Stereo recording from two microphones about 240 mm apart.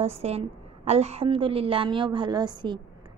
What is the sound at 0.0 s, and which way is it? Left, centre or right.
A woman's voice, right.